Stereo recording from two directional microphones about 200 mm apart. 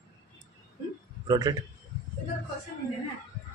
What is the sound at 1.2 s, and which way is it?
Speech, 20° right (ahead or behind).